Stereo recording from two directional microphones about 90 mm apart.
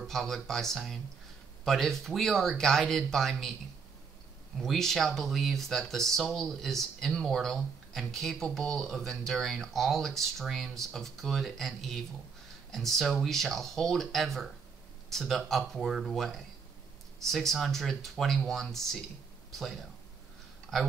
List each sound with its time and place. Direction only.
0.0 s speech: 5° left (ahead or behind)
4.6 s speech: centre (ahead or behind)